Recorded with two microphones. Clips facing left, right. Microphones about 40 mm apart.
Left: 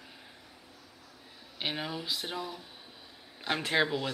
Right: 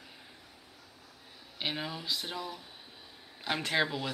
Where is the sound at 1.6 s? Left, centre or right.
Centre.